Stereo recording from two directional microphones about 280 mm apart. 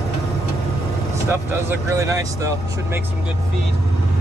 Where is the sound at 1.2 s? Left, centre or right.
Centre.